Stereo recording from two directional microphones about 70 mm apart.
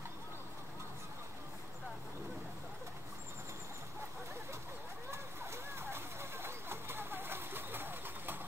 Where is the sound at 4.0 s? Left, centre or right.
Right.